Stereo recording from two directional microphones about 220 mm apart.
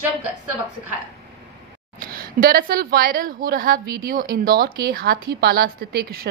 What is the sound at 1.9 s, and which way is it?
A woman's voice, 40° right (ahead or behind).